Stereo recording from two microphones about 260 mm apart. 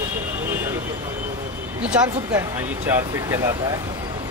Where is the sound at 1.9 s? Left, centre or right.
Centre.